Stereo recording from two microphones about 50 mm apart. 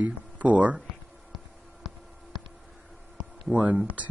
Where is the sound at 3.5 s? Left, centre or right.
Right.